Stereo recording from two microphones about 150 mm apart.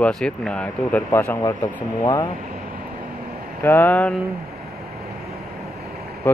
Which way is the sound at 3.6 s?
15° left (ahead or behind).